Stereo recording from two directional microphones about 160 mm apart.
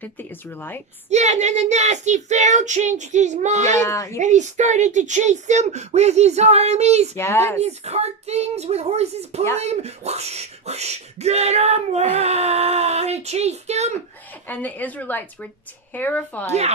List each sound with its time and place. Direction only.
0.0 s speech: 10° left (ahead or behind)
1.1 s speech: 45° right (ahead or behind)
3.8 s speech: 20° left (ahead or behind)
4.2 s speech: 50° right (ahead or behind)
7.2 s speech: 15° left (ahead or behind)
7.6 s speech: 40° right (ahead or behind)
14.5 s speech: 10° left (ahead or behind)